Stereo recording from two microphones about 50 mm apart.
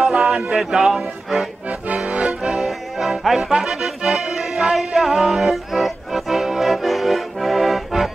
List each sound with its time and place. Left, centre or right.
0.0 s music: centre
0.6 s speech: centre
1.7 s accordion: right
2.4 s music: centre
3.6 s accordion: centre
4.0 s accordion: centre
4.4 s music: centre